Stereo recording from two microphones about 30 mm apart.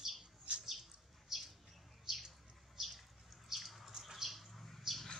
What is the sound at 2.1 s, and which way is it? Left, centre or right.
Bird, centre.